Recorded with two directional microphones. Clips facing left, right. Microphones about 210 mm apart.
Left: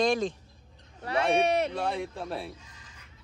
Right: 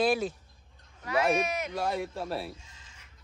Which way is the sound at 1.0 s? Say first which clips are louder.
Left 2 dB; 30° left (ahead or behind).